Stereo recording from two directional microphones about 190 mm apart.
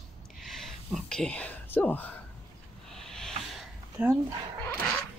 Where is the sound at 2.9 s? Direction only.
5° left (ahead or behind).